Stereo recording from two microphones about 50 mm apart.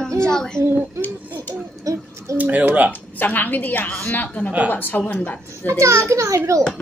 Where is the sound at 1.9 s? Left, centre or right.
Right.